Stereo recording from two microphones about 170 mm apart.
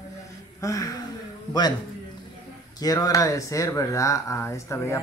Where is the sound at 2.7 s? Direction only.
20° left (ahead or behind).